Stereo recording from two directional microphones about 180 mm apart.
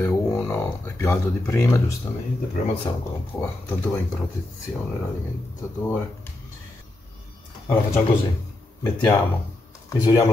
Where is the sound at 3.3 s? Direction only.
10° left (ahead or behind).